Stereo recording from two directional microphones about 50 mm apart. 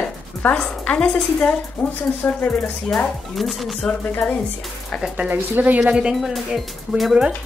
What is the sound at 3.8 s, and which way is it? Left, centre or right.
Speech, centre.